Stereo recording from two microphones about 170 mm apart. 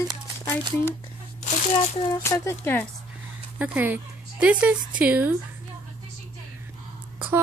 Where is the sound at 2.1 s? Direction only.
20° left (ahead or behind).